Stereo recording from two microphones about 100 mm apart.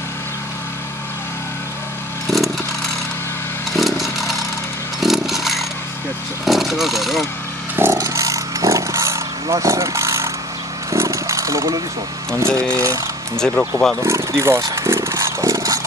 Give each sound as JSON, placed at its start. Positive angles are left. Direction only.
{"t": 3.7, "sound": "chainsaw", "side_deg": 0}
{"t": 6.4, "sound": "speech", "side_deg": 0}
{"t": 7.7, "sound": "a sound", "side_deg": -25}
{"t": 10.9, "sound": "vehicle", "side_deg": -30}
{"t": 12.4, "sound": "speech", "side_deg": -30}
{"t": 13.4, "sound": "speech", "side_deg": 10}
{"t": 14.0, "sound": "speech", "side_deg": -25}
{"t": 14.8, "sound": "chainsaw", "side_deg": -30}